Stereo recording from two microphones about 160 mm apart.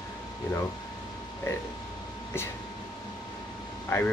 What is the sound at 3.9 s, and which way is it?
Speech, 15° left (ahead or behind).